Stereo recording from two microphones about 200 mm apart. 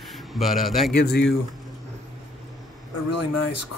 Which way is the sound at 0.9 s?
55° left (ahead or behind).